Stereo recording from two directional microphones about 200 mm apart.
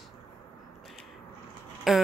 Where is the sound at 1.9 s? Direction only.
Centre (ahead or behind).